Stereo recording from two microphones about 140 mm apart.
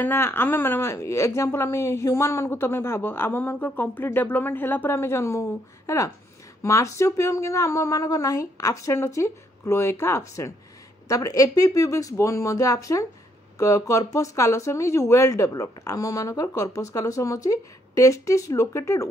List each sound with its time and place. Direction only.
0.0 s a woman's voice: 15° left (ahead or behind)